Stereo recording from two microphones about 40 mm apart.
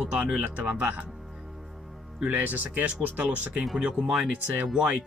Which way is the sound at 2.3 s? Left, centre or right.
Right.